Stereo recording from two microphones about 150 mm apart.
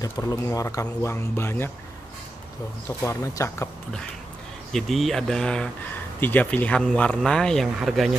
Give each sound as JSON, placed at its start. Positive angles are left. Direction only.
{"t": 0.0, "sound": "speech", "side_deg": 25}
{"t": 3.0, "sound": "speech", "side_deg": 20}
{"t": 4.7, "sound": "speech", "side_deg": 0}